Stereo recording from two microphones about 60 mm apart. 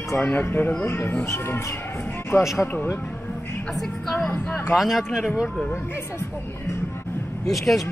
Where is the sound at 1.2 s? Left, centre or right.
Left.